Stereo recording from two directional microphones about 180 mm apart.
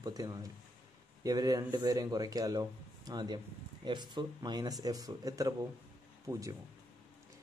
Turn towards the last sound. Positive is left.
turn(degrees=-20)  # may be behind; listen again after turning